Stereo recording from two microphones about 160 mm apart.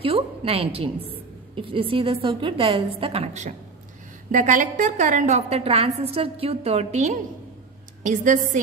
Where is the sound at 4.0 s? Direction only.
50° right (ahead or behind).